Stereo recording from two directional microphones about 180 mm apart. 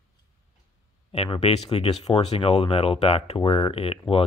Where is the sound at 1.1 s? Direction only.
30° left (ahead or behind).